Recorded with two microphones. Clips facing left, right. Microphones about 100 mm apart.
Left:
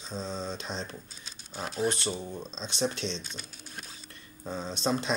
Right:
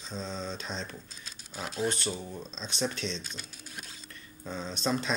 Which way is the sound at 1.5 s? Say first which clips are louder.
Left 2 dB; 20° left (ahead or behind).